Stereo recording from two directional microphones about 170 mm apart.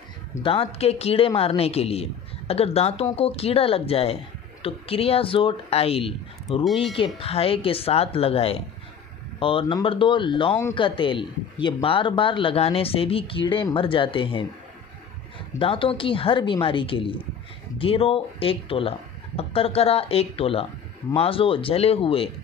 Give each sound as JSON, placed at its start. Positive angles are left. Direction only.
{"t": 0.3, "sound": "a man's voice", "side_deg": 30}
{"t": 6.6, "sound": "speech", "side_deg": 0}
{"t": 7.2, "sound": "a man's voice", "side_deg": 35}
{"t": 15.6, "sound": "a man's voice", "side_deg": 30}